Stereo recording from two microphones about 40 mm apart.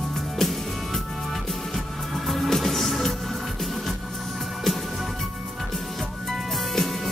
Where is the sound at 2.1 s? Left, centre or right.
Centre.